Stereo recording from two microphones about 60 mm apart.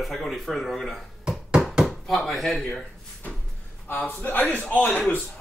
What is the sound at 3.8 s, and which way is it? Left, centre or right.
A man's voice, left.